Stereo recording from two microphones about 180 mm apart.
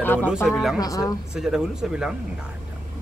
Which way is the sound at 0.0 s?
10° left (ahead or behind).